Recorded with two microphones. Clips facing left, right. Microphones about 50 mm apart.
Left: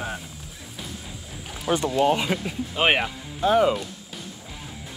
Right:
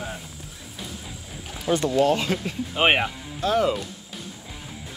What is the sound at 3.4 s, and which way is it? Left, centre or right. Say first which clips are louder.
Speech: left 3 dB; centre.